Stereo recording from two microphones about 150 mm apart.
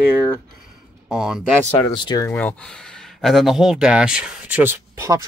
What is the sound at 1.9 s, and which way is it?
Speech, 25° left (ahead or behind).